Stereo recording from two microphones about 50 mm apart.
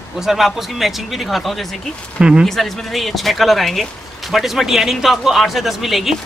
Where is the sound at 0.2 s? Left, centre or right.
Centre.